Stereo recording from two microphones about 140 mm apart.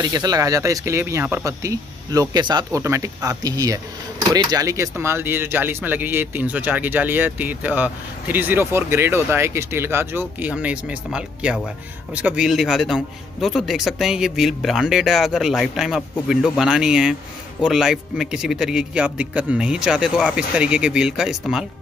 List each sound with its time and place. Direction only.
0.0 s a man's voice: 30° right (ahead or behind); by 21.6 s 5° right (ahead or behind)